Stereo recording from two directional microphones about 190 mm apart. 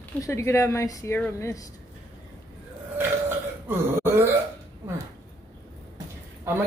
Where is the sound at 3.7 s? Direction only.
10° right (ahead or behind).